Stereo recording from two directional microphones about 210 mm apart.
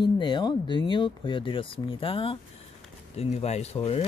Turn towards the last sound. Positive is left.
turn(degrees=30)  # may be behind; listen again after turning